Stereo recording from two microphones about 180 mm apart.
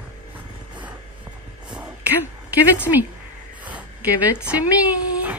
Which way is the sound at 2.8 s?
10° right (ahead or behind).